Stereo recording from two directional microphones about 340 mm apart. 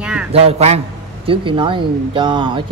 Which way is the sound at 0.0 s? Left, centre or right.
Centre.